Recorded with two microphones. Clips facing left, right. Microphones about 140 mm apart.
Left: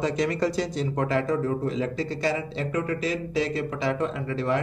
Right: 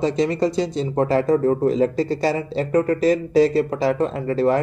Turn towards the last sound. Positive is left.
turn(degrees=-40)  # may be behind; listen again after turning